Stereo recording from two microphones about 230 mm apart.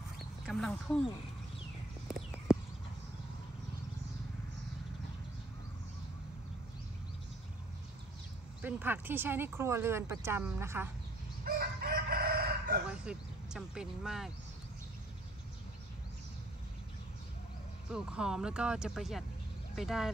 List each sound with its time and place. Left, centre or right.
0.5 s speech: centre
2.5 s horse: centre
8.6 s speech: centre
11.4 s chicken: right
12.9 s speech: centre
17.9 s speech: centre